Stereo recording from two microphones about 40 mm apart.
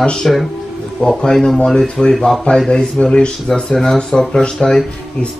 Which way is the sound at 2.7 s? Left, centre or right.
Left.